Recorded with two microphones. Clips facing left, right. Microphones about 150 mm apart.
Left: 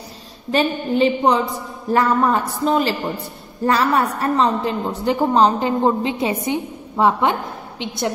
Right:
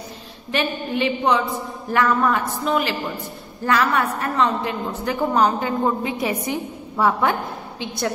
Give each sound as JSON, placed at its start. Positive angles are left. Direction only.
{"t": 0.5, "sound": "a woman's voice", "side_deg": 35}